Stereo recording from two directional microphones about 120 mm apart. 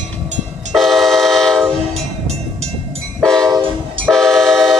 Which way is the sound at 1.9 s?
65° right (ahead or behind).